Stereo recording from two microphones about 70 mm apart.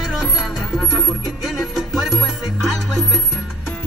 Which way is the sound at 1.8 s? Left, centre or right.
Centre.